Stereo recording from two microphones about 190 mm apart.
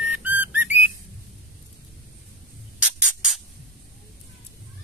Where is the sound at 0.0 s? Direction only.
10° right (ahead or behind).